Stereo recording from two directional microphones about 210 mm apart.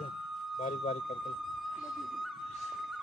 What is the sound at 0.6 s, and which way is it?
Speech, 30° left (ahead or behind).